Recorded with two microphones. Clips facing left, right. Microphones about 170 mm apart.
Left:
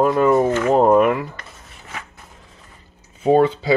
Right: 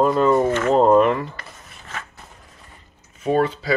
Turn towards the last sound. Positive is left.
turn(degrees=25)  # may be behind; listen again after turning